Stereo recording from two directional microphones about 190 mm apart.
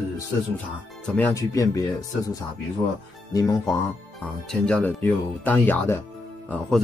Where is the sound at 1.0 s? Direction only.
10° left (ahead or behind).